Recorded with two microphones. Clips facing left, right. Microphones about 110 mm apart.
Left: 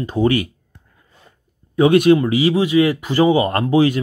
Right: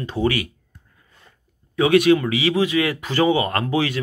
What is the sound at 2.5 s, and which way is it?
Speech, 20° left (ahead or behind).